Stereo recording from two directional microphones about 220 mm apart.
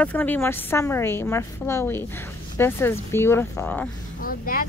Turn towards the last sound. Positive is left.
turn(degrees=40)  # may be behind; listen again after turning